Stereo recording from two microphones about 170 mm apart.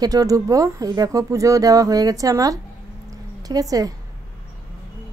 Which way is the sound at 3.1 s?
20° right (ahead or behind).